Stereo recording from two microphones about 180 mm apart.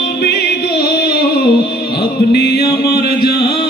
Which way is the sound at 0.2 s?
65° left (ahead or behind).